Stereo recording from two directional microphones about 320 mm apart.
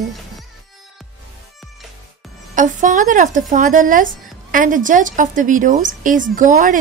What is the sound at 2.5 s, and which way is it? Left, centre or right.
Speech, right.